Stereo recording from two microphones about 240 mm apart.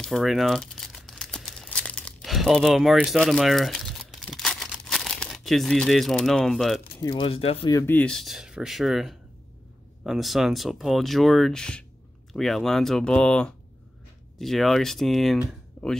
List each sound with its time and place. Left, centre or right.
0.0 s crumpling: centre
7.0 s speech: left
7.8 s speech: centre